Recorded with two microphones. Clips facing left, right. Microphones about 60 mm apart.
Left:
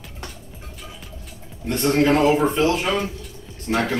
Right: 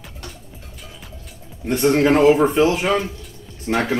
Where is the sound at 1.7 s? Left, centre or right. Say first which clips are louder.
Right 2 dB; centre.